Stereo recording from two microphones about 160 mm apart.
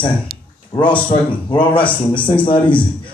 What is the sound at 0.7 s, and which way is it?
A man's voice, 30° left (ahead or behind).